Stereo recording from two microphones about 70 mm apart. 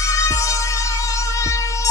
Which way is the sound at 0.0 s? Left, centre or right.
Left.